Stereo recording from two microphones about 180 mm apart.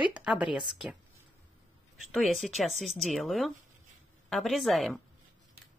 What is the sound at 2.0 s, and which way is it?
Speech, centre (ahead or behind).